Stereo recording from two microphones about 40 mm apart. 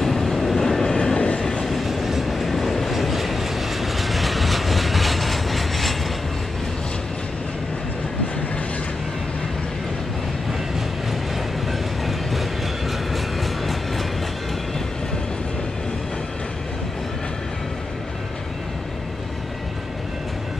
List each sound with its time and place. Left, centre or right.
0.0 s train: centre
0.9 s train: left
1.7 s train: centre
12.3 s train: centre